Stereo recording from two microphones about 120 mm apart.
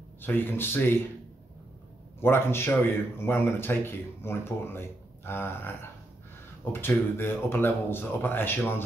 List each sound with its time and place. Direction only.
0.2 s speech: 15° left (ahead or behind)
2.1 s a man's voice: 20° left (ahead or behind)